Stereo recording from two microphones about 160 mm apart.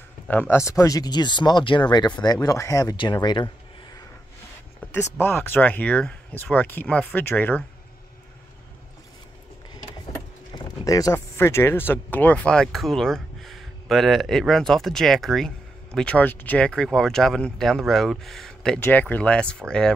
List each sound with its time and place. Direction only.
0.3 s speech: 10° left (ahead or behind); by 4.0 s 30° left (ahead or behind)
4.7 s speech: 15° left (ahead or behind)
10.1 s speech: 25° left (ahead or behind); by 19.5 s 5° left (ahead or behind)